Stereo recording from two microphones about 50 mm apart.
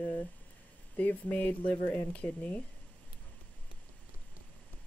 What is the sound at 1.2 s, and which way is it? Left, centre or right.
Speech, left.